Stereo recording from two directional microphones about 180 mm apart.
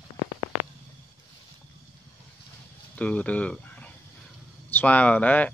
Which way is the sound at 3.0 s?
5° left (ahead or behind).